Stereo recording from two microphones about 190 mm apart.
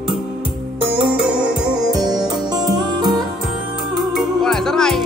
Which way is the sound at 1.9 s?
20° right (ahead or behind).